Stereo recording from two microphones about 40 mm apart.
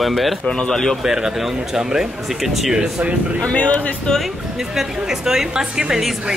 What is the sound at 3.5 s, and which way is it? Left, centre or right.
Speech, left.